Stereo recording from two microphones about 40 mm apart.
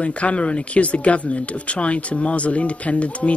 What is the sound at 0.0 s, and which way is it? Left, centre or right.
Speech, left.